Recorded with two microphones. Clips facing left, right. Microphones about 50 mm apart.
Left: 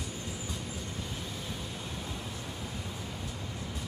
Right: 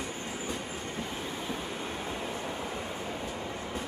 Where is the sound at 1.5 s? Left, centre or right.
Right.